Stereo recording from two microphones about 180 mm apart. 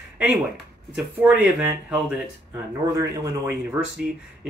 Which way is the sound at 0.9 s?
5° right (ahead or behind).